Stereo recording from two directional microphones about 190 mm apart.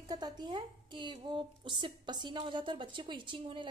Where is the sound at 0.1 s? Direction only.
20° right (ahead or behind).